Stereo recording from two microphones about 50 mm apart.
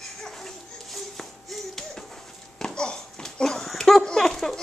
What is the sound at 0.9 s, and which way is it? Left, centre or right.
Music, centre.